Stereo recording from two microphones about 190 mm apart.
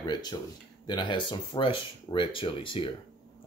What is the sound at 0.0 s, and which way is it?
Speech, 20° left (ahead or behind).